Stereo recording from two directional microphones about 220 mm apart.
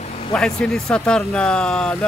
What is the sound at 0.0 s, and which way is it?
Vehicle, 25° left (ahead or behind).